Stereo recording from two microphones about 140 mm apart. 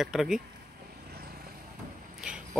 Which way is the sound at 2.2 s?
5° right (ahead or behind).